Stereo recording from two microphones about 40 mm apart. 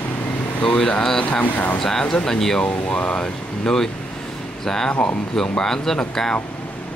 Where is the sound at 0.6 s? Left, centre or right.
Left.